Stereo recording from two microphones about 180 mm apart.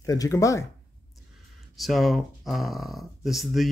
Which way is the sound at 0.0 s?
20° left (ahead or behind).